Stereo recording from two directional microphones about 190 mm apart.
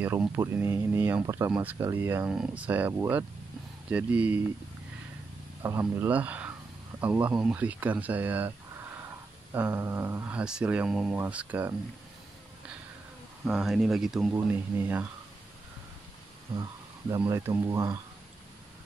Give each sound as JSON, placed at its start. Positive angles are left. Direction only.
{"t": 0.0, "sound": "speech", "side_deg": -10}
{"t": 5.6, "sound": "speech", "side_deg": -15}
{"t": 13.5, "sound": "speech", "side_deg": 0}
{"t": 17.2, "sound": "speech", "side_deg": -15}